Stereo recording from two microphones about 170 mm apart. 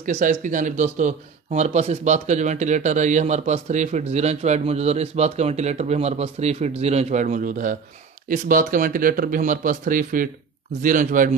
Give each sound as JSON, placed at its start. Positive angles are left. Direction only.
{"t": 0.0, "sound": "speech", "side_deg": -45}